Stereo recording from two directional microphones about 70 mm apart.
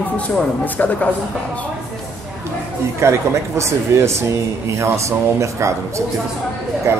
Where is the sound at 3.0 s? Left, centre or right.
Right.